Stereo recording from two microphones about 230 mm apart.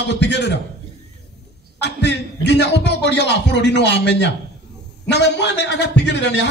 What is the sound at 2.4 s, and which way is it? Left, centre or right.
Speech, left.